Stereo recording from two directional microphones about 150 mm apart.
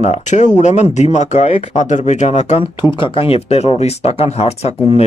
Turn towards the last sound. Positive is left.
turn(degrees=45)  # may be behind; listen again after turning